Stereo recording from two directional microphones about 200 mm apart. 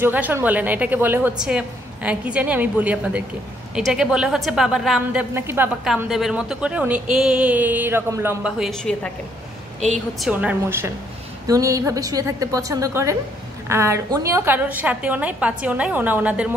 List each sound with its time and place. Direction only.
0.0 s a woman's voice: 10° right (ahead or behind)